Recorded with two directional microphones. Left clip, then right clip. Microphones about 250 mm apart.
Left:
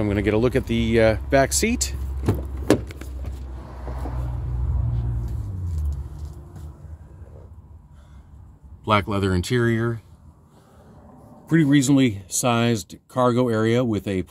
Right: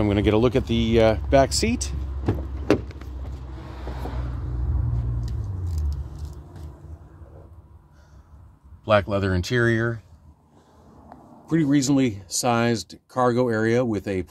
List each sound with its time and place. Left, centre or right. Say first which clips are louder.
0.0 s speech: right 1 dB; centre
3.6 s vehicle: even; right
8.8 s speech: right 1 dB; centre
11.4 s speech: left 2 dB; centre